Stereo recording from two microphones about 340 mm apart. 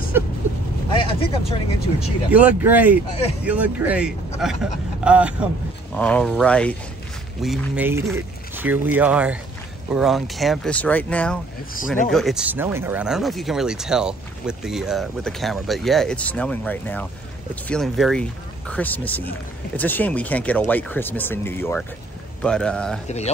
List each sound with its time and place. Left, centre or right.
0.9 s speech: centre
2.0 s speech: centre
23.0 s speech: centre